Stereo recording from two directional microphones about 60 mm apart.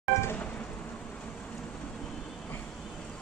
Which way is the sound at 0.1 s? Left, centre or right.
Left.